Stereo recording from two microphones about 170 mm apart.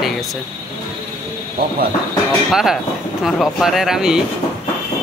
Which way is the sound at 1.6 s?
65° right (ahead or behind).